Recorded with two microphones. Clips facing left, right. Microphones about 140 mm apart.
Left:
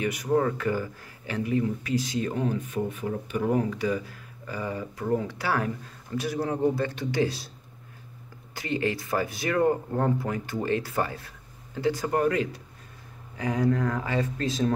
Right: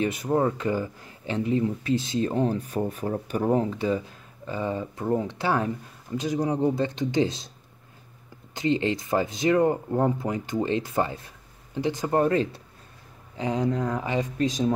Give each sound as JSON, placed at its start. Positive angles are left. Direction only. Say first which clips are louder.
{"t": 0.0, "sound": "speech", "louder": "right 1 dB", "side_deg": -30}
{"t": 3.5, "sound": "speech", "louder": "right 2 dB", "side_deg": -25}
{"t": 8.5, "sound": "speech", "louder": "right 4 dB", "side_deg": -25}